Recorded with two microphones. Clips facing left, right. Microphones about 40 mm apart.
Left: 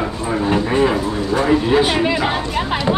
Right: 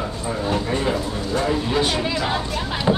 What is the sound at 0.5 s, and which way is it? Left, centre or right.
Speech, left.